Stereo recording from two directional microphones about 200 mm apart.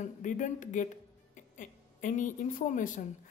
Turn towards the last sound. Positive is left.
turn(degrees=40)  # may be behind; listen again after turning